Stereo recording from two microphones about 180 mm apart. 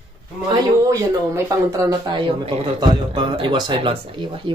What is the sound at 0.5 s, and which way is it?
Speech, 20° right (ahead or behind).